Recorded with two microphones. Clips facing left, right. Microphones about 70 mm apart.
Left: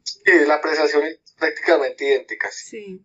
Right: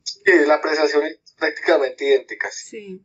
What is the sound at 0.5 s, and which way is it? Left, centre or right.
Speech, left.